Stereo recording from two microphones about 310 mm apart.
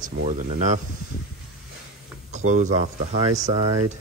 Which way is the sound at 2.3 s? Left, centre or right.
Right.